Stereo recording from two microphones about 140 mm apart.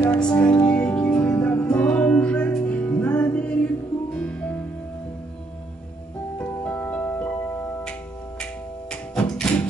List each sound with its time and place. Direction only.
0.1 s speech: 5° left (ahead or behind)
0.7 s music: 10° left (ahead or behind)
6.3 s music: 10° left (ahead or behind)
9.1 s music: 5° left (ahead or behind)